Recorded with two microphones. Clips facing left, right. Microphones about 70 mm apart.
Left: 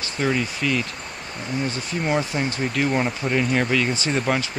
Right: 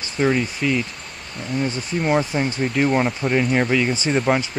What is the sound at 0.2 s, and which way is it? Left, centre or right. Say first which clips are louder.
Speech: right 3 dB; centre.